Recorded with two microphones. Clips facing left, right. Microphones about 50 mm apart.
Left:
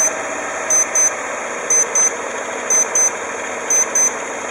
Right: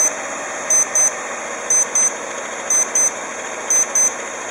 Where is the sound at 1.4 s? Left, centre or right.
Left.